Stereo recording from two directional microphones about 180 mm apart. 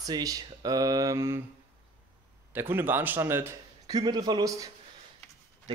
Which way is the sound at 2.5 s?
10° right (ahead or behind).